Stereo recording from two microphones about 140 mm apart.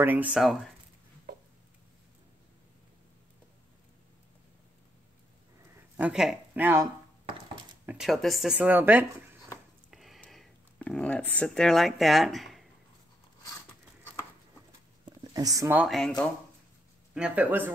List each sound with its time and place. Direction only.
0.0 s speech: 10° right (ahead or behind)
0.4 s speech: centre (ahead or behind)
5.9 s speech: 5° right (ahead or behind)
7.8 s a sound: 10° right (ahead or behind)
8.1 s speech: centre (ahead or behind)
8.5 s speech: 15° right (ahead or behind)
9.8 s a sound: centre (ahead or behind)
15.3 s speech: 25° right (ahead or behind)
15.9 s speech: 5° left (ahead or behind)
17.1 s speech: 10° right (ahead or behind)